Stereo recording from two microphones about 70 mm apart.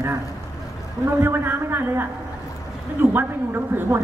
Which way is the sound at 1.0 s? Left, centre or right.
Right.